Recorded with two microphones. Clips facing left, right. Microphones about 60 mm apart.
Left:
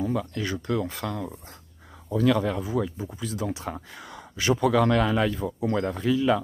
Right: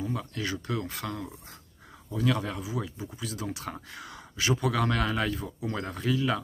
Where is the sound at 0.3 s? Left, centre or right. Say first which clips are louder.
Left 4 dB; left.